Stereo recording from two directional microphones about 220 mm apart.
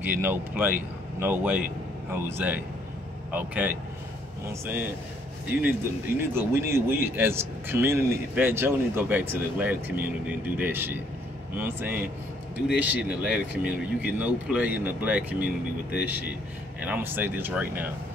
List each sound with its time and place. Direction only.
0.0 s speech: 10° right (ahead or behind)